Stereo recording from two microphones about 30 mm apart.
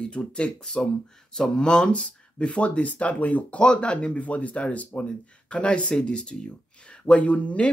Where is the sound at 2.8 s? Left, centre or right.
Left.